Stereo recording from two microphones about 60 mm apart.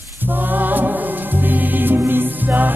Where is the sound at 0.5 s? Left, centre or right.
Right.